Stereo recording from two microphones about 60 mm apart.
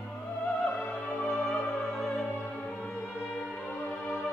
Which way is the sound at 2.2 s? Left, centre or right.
Left.